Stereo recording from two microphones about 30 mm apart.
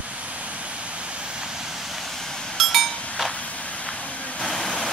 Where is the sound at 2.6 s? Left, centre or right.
Centre.